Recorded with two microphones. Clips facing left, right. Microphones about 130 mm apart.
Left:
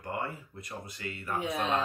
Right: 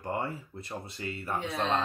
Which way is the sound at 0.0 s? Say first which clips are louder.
Right 3 dB; 30° right (ahead or behind).